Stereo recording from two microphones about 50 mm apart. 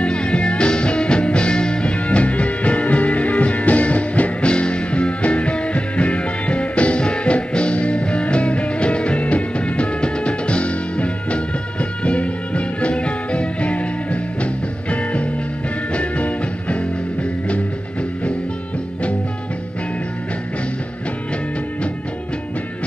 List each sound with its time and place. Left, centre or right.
0.0 s music: left